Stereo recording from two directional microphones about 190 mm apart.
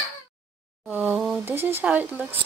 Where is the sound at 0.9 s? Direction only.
5° right (ahead or behind).